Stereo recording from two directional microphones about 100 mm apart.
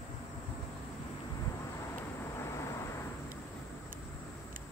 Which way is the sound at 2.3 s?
30° left (ahead or behind).